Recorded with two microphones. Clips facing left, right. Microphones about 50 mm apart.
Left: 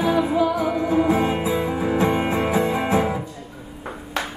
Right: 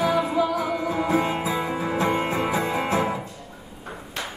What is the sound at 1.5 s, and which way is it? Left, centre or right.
Music, centre.